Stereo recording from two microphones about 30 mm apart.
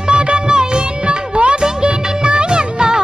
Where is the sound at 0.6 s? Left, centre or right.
Right.